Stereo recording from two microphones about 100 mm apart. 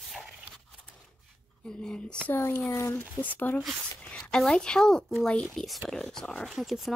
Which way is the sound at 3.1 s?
15° left (ahead or behind).